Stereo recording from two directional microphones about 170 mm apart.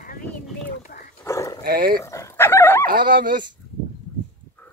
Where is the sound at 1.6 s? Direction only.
60° right (ahead or behind).